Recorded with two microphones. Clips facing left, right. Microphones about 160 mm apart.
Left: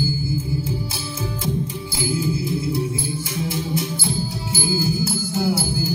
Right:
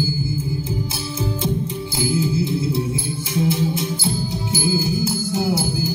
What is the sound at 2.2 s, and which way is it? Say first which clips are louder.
Music: right 2 dB; 25° right (ahead or behind).